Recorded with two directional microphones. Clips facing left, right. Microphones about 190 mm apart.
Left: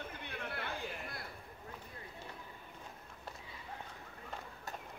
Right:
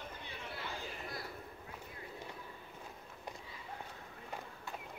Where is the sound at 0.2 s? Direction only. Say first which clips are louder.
Left 3 dB; 60° left (ahead or behind).